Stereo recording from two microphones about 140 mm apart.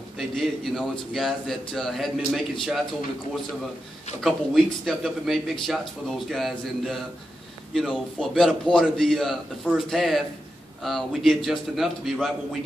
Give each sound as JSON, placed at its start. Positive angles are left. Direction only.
{"t": 0.4, "sound": "a man's voice", "side_deg": 0}
{"t": 4.2, "sound": "a man's voice", "side_deg": 0}